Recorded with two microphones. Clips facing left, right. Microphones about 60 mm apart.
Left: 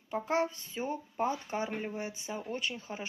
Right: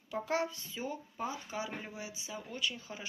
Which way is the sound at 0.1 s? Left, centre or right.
Left.